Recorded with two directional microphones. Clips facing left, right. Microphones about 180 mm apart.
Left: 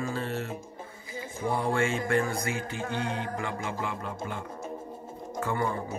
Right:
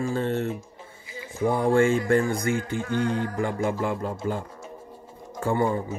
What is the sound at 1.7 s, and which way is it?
Speech, 35° right (ahead or behind).